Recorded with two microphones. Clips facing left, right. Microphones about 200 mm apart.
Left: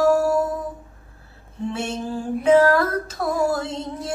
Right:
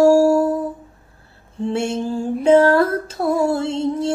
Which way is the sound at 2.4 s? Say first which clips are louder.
Right 3 dB; 30° right (ahead or behind).